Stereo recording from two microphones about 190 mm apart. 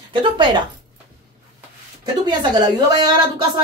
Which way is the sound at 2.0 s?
20° right (ahead or behind).